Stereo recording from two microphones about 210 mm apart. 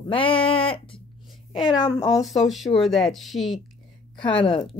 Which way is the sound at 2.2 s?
Centre (ahead or behind).